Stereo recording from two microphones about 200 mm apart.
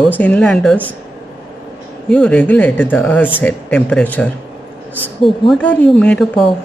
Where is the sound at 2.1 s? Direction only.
5° left (ahead or behind).